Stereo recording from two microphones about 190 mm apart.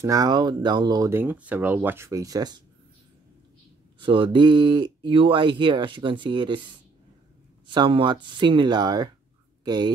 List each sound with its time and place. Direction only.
0.0 s speech: 20° right (ahead or behind)
4.0 s speech: 25° right (ahead or behind)